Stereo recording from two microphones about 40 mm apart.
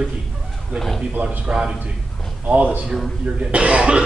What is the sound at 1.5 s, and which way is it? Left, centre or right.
Speech, right.